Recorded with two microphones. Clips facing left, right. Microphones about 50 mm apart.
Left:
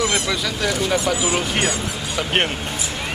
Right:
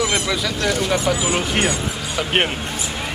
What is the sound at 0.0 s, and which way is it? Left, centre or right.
Speech, centre.